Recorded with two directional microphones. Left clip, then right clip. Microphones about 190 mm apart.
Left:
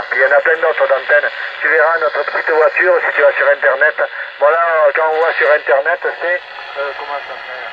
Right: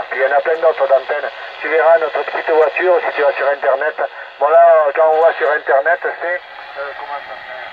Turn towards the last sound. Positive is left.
turn(degrees=10)  # may be behind; listen again after turning